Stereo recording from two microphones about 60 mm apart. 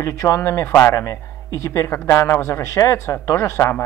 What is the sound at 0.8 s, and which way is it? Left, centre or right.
A man's voice, left.